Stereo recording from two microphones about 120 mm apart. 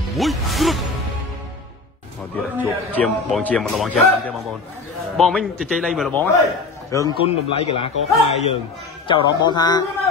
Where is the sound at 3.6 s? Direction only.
Centre (ahead or behind).